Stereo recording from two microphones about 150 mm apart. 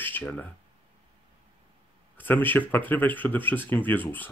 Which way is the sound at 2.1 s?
10° left (ahead or behind).